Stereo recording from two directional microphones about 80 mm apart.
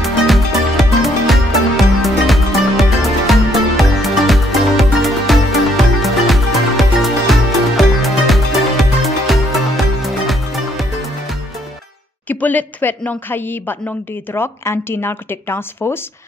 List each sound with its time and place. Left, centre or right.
0.0 s music: centre
12.3 s speech: left